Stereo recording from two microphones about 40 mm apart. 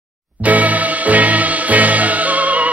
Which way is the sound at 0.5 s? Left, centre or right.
Right.